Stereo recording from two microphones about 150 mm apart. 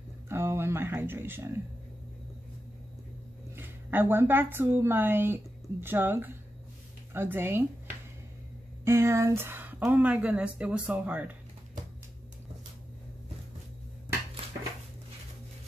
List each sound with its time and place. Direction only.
0.3 s a sound: 15° right (ahead or behind)
3.5 s a woman's voice: 15° right (ahead or behind)
8.8 s speech: 20° right (ahead or behind)